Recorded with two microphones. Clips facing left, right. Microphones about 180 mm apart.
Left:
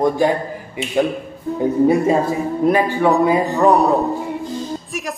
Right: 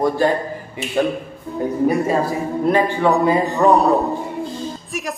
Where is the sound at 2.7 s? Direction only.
10° left (ahead or behind).